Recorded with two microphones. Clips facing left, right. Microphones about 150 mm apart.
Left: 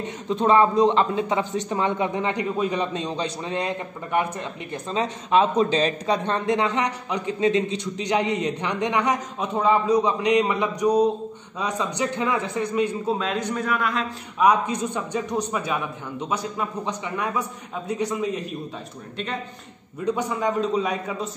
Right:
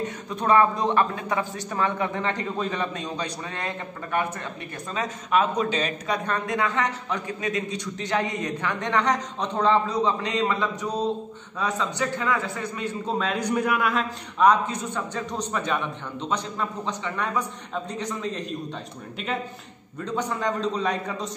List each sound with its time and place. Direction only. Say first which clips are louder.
0.0 s a man's voice: left 5 dB; 25° left (ahead or behind)
13.4 s a man's voice: right 1 dB; 10° right (ahead or behind)
14.4 s a man's voice: even; 15° left (ahead or behind)
19.1 s a man's voice: right 1 dB; centre (ahead or behind)
20.2 s a man's voice: even; 10° left (ahead or behind)